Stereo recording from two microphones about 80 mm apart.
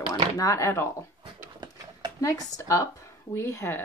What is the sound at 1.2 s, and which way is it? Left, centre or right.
Dog, right.